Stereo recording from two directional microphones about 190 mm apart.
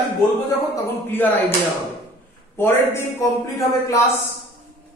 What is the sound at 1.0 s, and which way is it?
Speech, 10° left (ahead or behind).